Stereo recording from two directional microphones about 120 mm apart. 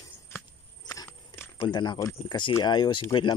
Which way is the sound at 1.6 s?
40° left (ahead or behind).